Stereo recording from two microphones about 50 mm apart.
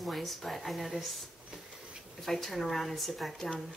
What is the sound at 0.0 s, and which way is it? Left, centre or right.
Speech, centre.